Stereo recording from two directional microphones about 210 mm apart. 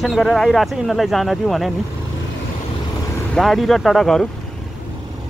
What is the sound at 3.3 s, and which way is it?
Speech, centre (ahead or behind).